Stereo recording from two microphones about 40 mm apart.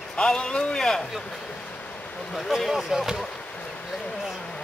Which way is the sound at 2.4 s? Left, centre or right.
Centre.